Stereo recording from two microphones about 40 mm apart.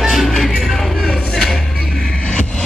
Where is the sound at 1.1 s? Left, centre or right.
Centre.